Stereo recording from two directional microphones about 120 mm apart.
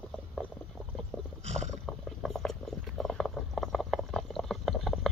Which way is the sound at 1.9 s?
Centre (ahead or behind).